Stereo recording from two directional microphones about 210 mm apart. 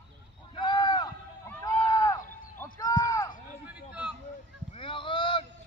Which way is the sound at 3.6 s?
5° right (ahead or behind).